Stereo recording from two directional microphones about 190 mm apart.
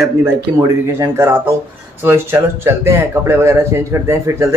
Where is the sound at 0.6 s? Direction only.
15° right (ahead or behind).